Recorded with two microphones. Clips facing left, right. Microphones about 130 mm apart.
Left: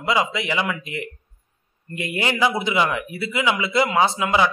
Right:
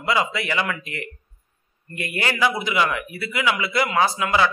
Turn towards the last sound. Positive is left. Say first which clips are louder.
# left 1 dB
turn(degrees=20)  # may be behind; listen again after turning